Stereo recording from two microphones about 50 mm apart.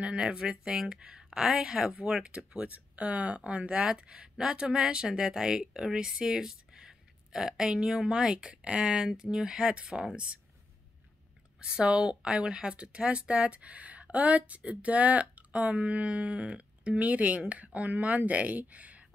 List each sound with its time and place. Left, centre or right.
0.0 s a woman's voice: right
11.6 s a woman's voice: centre